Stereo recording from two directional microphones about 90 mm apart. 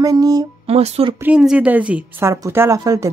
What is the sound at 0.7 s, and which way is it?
Speech, 90° right.